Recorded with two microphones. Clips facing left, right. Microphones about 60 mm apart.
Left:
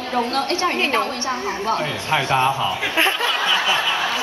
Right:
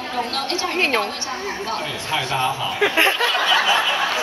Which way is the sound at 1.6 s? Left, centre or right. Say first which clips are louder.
Left 7 dB; left.